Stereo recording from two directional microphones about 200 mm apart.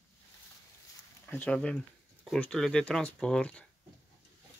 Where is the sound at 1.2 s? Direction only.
10° left (ahead or behind).